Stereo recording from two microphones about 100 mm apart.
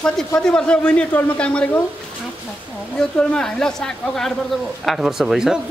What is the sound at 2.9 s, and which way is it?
Speech, 5° left (ahead or behind).